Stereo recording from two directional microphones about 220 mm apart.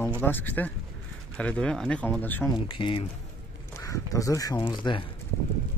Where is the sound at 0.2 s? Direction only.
10° left (ahead or behind).